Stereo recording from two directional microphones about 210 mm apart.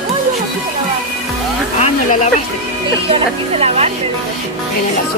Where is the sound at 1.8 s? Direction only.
35° left (ahead or behind).